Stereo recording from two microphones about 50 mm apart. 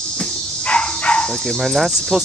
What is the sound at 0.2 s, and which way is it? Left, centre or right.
Cricket, centre.